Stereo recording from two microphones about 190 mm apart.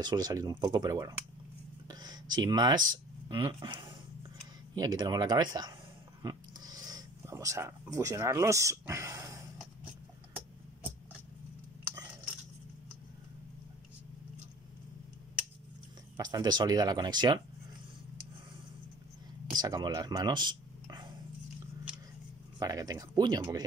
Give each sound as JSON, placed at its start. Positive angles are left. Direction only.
{"t": 0.0, "sound": "speech", "side_deg": -20}
{"t": 1.9, "sound": "a sound", "side_deg": -20}
{"t": 2.9, "sound": "speech", "side_deg": -25}
{"t": 6.2, "sound": "a sound", "side_deg": -20}
{"t": 16.2, "sound": "speech", "side_deg": -20}
{"t": 19.5, "sound": "speech", "side_deg": -20}
{"t": 22.6, "sound": "speech", "side_deg": -20}